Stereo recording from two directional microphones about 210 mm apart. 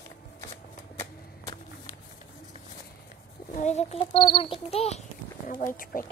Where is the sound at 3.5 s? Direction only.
35° left (ahead or behind).